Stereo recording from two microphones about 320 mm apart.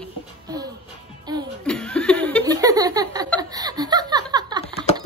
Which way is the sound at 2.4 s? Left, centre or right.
Centre.